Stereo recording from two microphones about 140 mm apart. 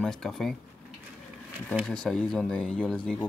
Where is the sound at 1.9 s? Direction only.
5° left (ahead or behind).